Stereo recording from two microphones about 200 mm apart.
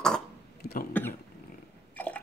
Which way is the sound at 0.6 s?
50° left (ahead or behind).